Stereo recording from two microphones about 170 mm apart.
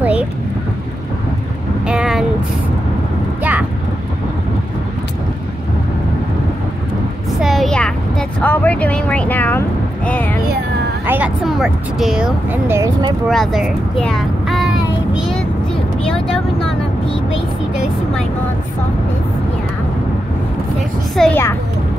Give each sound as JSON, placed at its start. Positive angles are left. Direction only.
{"t": 0.0, "sound": "a sound", "side_deg": -10}
{"t": 1.9, "sound": "a sound", "side_deg": -5}
{"t": 7.3, "sound": "a sound", "side_deg": 0}
{"t": 10.0, "sound": "speech", "side_deg": 10}
{"t": 11.1, "sound": "speech", "side_deg": -10}
{"t": 12.6, "sound": "speech", "side_deg": -15}
{"t": 13.3, "sound": "speech", "side_deg": 0}
{"t": 15.1, "sound": "vehicle", "side_deg": 0}
{"t": 21.2, "sound": "speech", "side_deg": 10}